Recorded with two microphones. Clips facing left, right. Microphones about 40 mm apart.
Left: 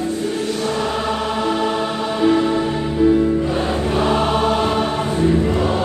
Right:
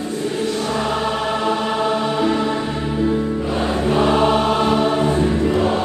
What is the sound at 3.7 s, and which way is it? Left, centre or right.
Choir, centre.